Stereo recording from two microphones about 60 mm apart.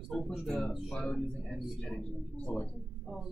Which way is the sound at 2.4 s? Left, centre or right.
Left.